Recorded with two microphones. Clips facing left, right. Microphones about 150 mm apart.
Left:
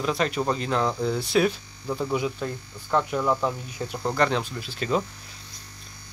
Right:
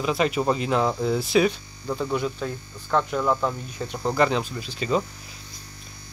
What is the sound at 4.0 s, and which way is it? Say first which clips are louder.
Speech: right 2 dB; 5° right (ahead or behind).